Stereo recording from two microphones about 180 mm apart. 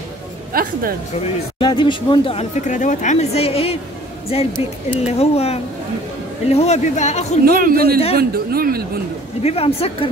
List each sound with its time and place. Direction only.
0.5 s speech: 55° right (ahead or behind)
1.6 s speech: 25° left (ahead or behind)
2.6 s speech: 45° left (ahead or behind)
7.4 s speech: 55° right (ahead or behind)
9.4 s speech: 35° left (ahead or behind)